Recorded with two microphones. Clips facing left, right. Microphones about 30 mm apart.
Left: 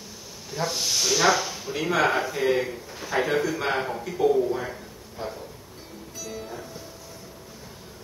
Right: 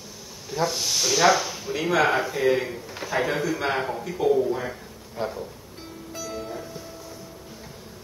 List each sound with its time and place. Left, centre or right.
0.5 s speech: centre
5.1 s speech: centre